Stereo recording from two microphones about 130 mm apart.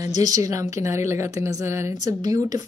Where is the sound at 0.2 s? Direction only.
25° right (ahead or behind).